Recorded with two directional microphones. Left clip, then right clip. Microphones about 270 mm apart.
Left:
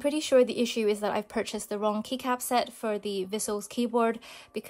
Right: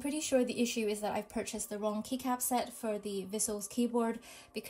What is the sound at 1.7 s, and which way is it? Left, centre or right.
A woman's voice, left.